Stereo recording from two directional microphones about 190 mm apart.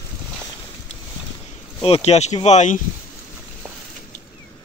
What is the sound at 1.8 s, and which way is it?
Speech, 35° left (ahead or behind).